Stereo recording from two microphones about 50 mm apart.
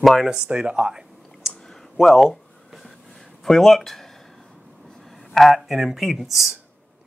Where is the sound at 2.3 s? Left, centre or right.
Centre.